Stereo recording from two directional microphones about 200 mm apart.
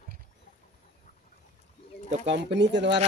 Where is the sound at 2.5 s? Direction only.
60° right (ahead or behind).